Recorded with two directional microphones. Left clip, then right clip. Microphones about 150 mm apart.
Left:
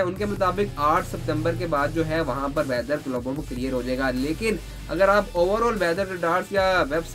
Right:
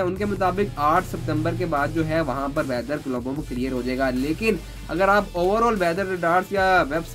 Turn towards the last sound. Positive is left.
turn(degrees=-5)  # may be behind; listen again after turning